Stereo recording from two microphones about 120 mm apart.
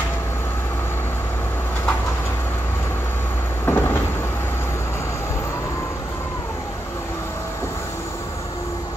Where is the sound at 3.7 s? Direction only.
20° left (ahead or behind).